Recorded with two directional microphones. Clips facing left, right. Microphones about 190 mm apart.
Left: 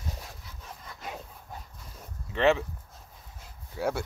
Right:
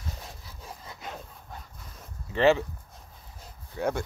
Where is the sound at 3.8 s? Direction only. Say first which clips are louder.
Right 1 dB; 5° left (ahead or behind).